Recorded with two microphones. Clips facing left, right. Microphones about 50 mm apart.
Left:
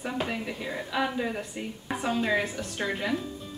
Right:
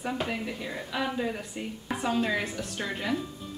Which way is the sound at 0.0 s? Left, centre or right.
Centre.